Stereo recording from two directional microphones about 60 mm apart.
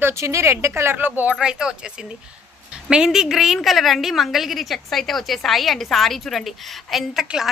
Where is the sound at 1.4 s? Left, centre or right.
Centre.